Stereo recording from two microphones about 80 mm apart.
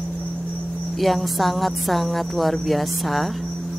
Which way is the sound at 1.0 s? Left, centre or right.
Centre.